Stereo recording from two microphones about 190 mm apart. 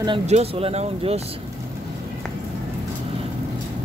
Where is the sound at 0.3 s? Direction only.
30° right (ahead or behind).